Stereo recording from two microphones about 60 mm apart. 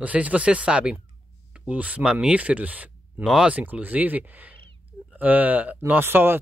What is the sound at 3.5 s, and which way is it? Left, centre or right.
Speech, right.